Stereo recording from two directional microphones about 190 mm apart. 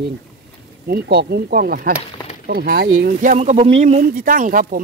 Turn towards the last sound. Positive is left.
turn(degrees=-45)  # may be behind; listen again after turning